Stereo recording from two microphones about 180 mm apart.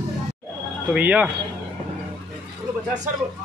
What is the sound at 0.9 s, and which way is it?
Speech, 10° right (ahead or behind).